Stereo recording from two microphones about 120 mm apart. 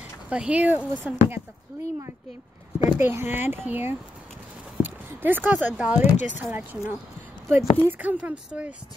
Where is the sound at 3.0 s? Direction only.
20° right (ahead or behind).